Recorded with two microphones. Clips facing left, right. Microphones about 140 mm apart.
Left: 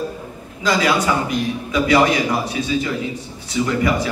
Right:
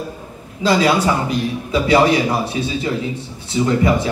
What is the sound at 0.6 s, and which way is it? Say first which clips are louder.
A man's voice: right 3 dB; 30° right (ahead or behind).